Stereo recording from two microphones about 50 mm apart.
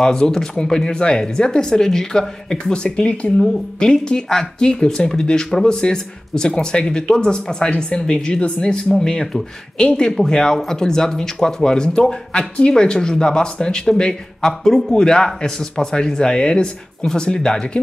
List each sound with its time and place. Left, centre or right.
0.0 s speech: centre